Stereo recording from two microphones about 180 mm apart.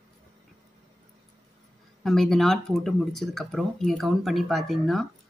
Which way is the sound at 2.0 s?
Centre (ahead or behind).